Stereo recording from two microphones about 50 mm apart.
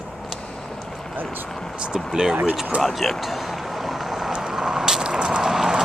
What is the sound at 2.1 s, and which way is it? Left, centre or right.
Speech, centre.